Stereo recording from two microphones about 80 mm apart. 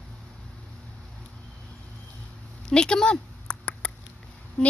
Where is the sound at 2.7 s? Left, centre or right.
Centre.